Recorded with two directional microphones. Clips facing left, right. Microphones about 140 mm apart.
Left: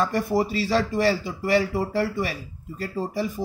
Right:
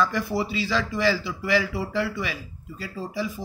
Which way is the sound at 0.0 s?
45° left (ahead or behind).